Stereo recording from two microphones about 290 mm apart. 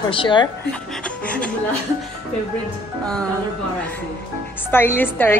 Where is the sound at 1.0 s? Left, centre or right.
Centre.